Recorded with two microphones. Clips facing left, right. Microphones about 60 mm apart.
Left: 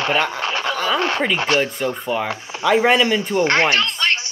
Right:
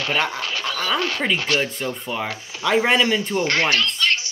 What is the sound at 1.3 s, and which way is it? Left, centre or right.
Speech, left.